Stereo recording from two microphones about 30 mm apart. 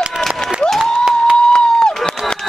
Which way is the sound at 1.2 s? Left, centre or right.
Left.